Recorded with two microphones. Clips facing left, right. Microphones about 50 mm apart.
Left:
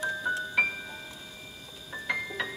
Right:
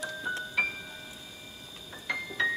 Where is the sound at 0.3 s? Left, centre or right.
Centre.